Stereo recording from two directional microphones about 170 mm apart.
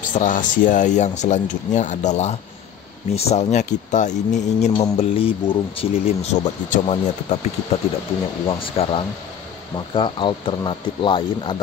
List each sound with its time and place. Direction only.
0.0 s speech: 50° left (ahead or behind)
8.5 s speech: 30° left (ahead or behind)